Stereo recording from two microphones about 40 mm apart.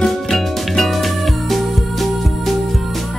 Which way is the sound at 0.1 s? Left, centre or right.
Centre.